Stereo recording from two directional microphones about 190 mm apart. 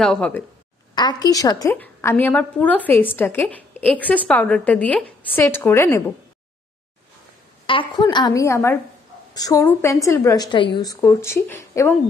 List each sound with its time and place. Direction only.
0.0 s speech: 5° left (ahead or behind)
0.9 s a woman's voice: 20° left (ahead or behind)
7.6 s a woman's voice: 25° left (ahead or behind)